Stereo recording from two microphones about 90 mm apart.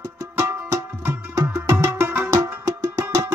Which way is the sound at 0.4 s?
40° right (ahead or behind).